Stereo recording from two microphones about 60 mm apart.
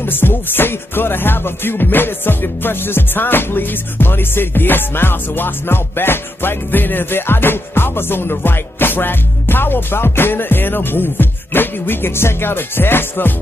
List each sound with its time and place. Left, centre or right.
0.0 s music: left